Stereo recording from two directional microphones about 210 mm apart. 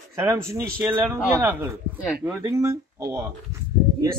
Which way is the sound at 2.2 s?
10° right (ahead or behind).